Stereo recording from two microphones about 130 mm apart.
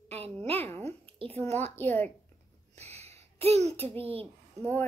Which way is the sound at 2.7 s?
55° right (ahead or behind).